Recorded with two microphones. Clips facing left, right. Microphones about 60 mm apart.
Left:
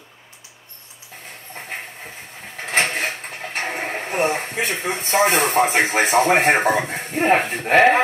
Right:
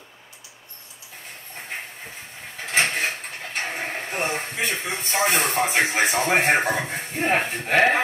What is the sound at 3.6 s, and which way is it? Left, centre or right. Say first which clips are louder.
Music: left 3 dB; left.